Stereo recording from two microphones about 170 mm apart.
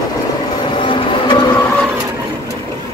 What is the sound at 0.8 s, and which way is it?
Vehicle, 30° left (ahead or behind).